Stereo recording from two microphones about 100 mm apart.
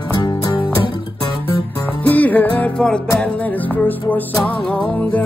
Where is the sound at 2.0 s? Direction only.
15° left (ahead or behind).